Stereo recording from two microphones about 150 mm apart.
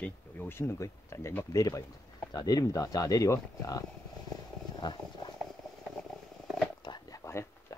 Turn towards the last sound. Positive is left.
turn(degrees=20)  # may be behind; listen again after turning